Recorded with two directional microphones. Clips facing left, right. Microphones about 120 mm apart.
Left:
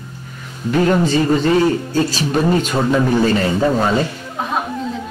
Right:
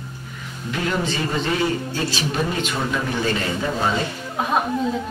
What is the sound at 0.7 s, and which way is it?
Speech, 40° left (ahead or behind).